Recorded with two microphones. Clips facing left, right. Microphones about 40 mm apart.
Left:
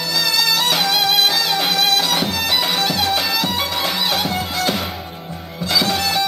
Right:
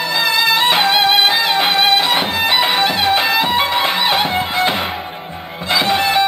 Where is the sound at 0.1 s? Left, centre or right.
Right.